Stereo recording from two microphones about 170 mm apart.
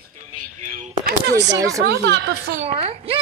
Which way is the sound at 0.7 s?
50° right (ahead or behind).